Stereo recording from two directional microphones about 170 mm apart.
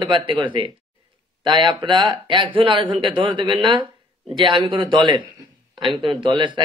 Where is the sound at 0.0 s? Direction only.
30° right (ahead or behind).